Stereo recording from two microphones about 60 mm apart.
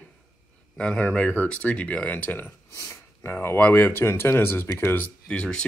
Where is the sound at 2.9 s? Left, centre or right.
Left.